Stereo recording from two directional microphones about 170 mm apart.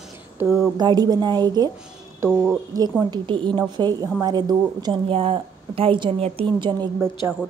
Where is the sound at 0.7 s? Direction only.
25° right (ahead or behind).